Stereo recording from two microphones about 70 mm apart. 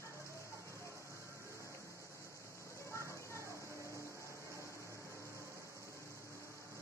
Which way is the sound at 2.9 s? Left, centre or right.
Left.